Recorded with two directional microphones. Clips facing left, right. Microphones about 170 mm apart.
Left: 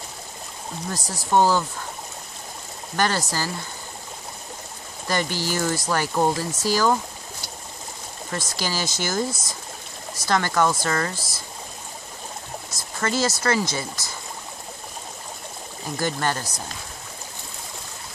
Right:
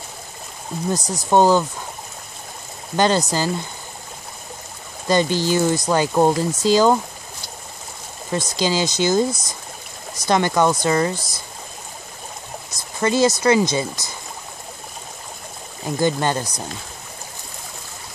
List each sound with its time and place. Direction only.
0.8 s speech: 20° right (ahead or behind)
3.0 s speech: 20° right (ahead or behind)
5.0 s speech: 20° right (ahead or behind)
8.3 s speech: 15° right (ahead or behind)
13.0 s speech: 15° right (ahead or behind)
16.0 s speech: 20° right (ahead or behind)